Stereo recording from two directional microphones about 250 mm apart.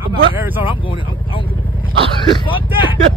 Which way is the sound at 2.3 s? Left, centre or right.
Centre.